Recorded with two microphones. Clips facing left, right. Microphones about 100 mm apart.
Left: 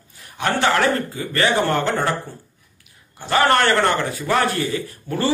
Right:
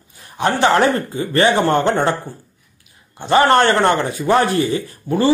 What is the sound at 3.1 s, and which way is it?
Speech, 25° right (ahead or behind).